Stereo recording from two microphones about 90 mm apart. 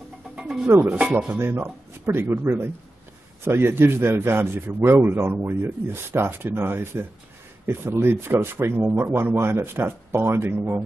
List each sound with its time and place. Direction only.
0.4 s music: 5° right (ahead or behind)
0.7 s a man's voice: 20° right (ahead or behind)
1.6 s a man's voice: 25° right (ahead or behind)